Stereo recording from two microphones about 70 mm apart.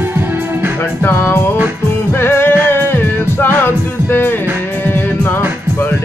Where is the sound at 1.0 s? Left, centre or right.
Left.